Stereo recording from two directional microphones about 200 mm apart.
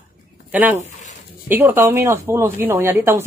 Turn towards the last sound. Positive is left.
turn(degrees=-10)  # may be behind; listen again after turning